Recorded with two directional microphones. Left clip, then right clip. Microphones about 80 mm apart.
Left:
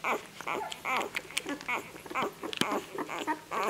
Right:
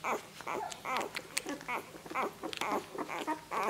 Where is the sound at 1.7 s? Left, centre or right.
Centre.